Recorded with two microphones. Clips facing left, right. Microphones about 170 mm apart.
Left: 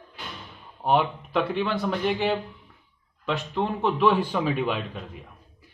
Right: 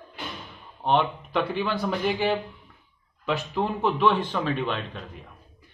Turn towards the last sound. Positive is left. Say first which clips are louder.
# left 2 dB
turn(degrees=5)  # may be behind; listen again after turning